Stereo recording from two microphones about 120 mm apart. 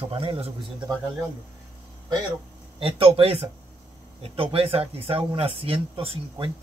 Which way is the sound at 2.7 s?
50° right (ahead or behind).